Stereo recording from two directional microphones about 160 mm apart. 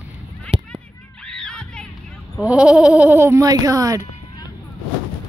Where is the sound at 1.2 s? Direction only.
5° left (ahead or behind).